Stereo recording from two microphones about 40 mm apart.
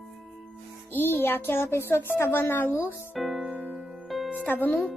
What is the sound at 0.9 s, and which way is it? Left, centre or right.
A child's voice, left.